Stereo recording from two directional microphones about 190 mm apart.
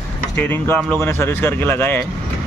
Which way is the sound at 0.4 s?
10° left (ahead or behind).